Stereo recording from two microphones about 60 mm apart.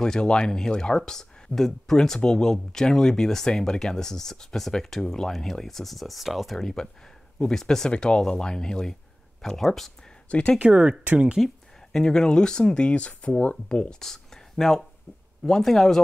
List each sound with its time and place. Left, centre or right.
0.0 s speech: centre
10.6 s speech: centre
11.3 s a sound: centre
12.0 s speech: centre